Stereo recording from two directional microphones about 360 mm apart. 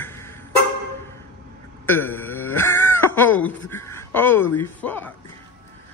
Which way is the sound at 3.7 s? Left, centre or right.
Centre.